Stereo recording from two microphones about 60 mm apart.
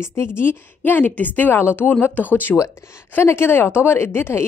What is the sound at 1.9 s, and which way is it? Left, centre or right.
Speech, left.